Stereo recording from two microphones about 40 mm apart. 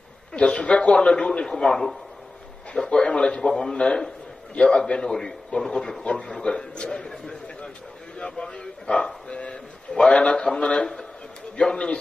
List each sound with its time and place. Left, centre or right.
0.3 s a man's voice: left
3.1 s a man's voice: left
3.3 s a man's voice: centre
3.7 s a man's voice: left
6.4 s a man's voice: left